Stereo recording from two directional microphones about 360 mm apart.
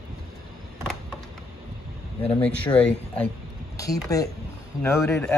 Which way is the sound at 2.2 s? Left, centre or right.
Centre.